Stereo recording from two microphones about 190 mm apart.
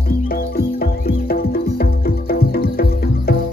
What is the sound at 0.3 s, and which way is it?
Music, 50° left (ahead or behind).